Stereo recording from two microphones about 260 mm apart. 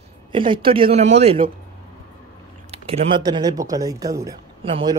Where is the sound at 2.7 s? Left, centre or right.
Right.